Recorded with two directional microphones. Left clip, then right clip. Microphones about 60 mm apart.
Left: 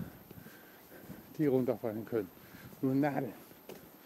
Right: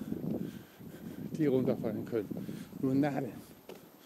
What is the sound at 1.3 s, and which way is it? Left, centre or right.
Speech, right.